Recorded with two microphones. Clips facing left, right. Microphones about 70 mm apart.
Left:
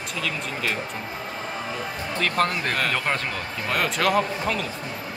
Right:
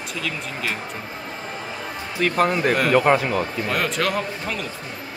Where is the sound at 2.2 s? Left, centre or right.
Centre.